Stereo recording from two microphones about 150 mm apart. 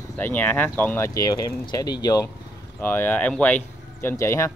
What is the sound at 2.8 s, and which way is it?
Speech, 15° left (ahead or behind).